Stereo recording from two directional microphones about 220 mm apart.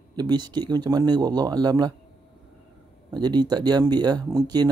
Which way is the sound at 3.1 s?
20° right (ahead or behind).